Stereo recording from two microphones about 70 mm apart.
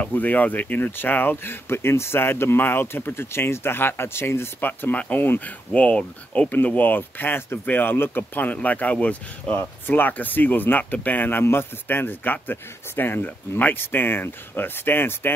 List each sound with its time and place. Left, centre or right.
0.0 s speech: left